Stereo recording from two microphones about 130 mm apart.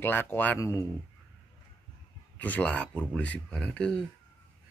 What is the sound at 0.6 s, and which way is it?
Speech, 25° left (ahead or behind).